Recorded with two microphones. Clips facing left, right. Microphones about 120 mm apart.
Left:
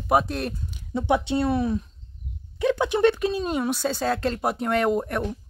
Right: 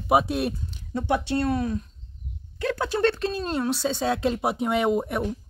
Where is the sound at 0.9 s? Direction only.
20° left (ahead or behind).